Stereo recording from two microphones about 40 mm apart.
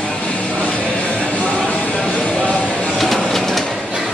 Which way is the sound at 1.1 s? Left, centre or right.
Left.